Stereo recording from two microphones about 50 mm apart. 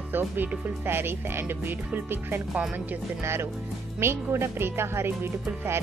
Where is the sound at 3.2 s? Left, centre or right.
Right.